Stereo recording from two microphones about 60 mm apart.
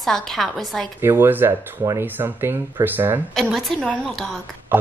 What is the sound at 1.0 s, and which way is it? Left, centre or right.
Speech, right.